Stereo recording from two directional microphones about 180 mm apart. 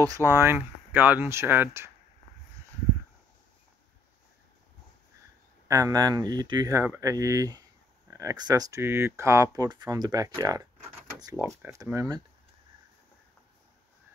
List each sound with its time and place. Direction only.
0.0 s speech: 20° right (ahead or behind)
5.7 s speech: 20° right (ahead or behind)